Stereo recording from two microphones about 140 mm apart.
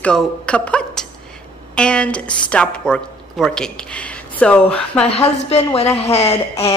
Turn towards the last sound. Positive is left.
turn(degrees=45)  # may be behind; listen again after turning